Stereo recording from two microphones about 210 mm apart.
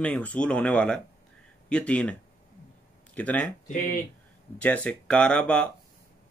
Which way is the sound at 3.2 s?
5° left (ahead or behind).